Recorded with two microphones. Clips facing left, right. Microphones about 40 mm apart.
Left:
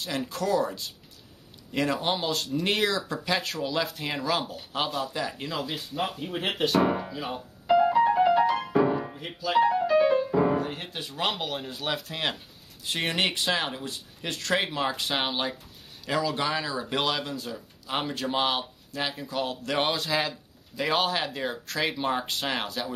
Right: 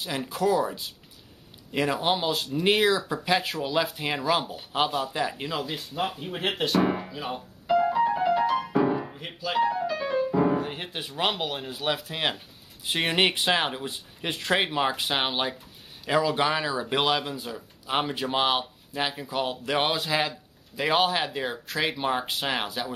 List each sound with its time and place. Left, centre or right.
0.0 s speech: centre
7.6 s piano: centre
9.6 s music: centre
10.3 s music: centre
10.6 s speech: centre